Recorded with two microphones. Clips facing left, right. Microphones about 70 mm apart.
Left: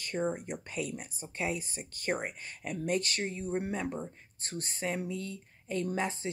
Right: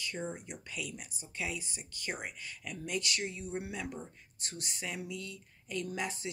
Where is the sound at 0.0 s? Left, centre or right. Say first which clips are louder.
Left 6 dB; left.